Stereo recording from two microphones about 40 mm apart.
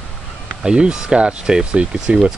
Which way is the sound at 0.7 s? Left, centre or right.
Right.